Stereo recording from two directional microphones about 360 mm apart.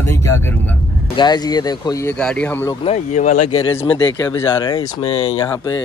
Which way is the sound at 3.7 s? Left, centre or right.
Centre.